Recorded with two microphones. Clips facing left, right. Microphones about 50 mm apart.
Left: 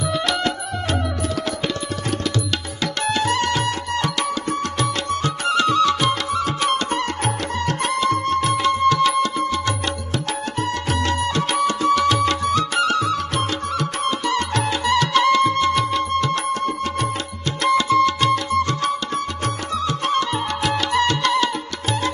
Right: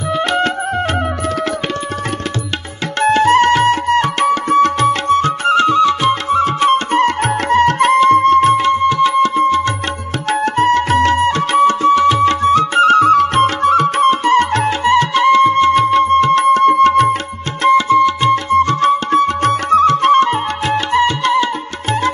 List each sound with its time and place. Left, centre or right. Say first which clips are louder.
0.1 s music: right 9 dB; right
3.0 s music: right 11 dB; right
10.4 s music: right 11 dB; right
17.6 s music: right 6 dB; right